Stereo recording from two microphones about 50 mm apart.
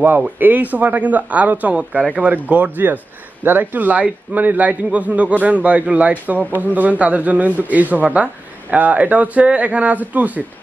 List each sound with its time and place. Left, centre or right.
0.4 s a man's voice: right